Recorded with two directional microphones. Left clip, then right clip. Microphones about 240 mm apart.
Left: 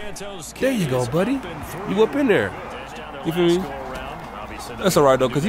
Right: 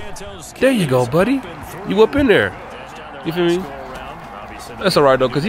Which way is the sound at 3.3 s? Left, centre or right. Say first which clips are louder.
Right 2 dB; centre.